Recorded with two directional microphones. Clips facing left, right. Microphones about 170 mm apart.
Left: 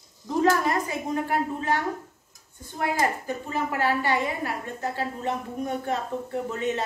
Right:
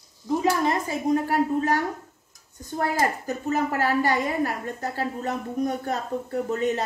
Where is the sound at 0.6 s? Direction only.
25° right (ahead or behind).